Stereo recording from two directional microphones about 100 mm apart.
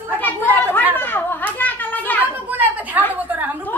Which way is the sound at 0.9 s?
20° left (ahead or behind).